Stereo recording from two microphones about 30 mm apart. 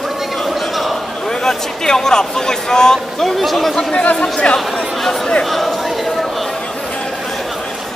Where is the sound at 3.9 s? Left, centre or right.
Left.